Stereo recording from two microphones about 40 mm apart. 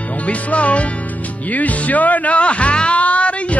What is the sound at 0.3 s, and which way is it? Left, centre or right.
Music, left.